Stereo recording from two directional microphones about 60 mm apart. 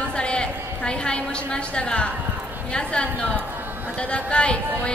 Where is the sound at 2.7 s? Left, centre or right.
Centre.